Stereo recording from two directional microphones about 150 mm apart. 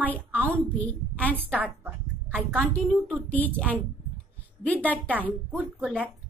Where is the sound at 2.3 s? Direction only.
5° left (ahead or behind).